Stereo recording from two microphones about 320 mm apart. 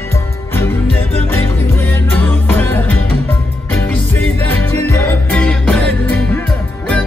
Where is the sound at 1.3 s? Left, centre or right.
Centre.